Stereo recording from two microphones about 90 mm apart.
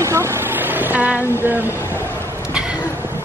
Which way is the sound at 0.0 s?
30° right (ahead or behind).